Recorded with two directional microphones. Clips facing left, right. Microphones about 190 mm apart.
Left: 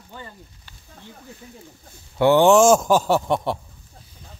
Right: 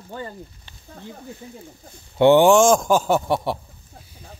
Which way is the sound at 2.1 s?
20° right (ahead or behind).